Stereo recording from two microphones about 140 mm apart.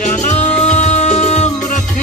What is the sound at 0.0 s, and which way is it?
Music, 55° left (ahead or behind).